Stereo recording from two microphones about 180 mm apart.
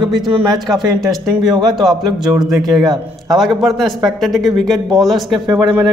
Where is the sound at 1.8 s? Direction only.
Centre (ahead or behind).